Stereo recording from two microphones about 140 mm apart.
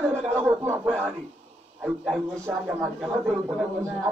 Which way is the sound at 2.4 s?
15° right (ahead or behind).